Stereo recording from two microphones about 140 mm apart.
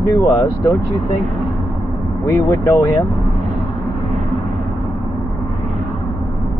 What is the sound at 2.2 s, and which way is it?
Speech, 20° left (ahead or behind).